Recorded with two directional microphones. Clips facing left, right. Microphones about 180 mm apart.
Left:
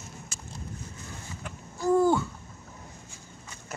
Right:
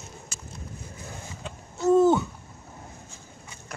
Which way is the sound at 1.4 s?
25° right (ahead or behind).